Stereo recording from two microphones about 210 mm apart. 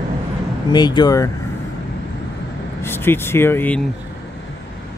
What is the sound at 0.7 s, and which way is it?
Speech, 20° left (ahead or behind).